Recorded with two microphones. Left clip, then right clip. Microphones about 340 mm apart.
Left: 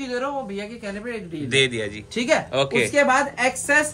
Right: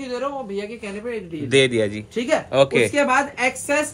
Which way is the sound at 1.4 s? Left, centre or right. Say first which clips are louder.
Right 4 dB; centre.